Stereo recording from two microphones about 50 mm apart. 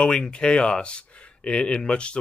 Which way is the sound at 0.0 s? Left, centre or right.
Centre.